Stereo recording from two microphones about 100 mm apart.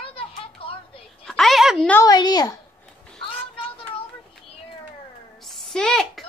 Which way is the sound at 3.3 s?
70° left (ahead or behind).